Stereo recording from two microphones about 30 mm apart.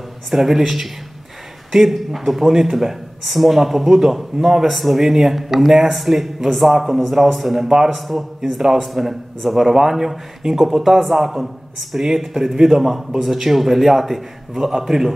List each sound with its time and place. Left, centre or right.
0.3 s speech: centre
4.6 s speech: centre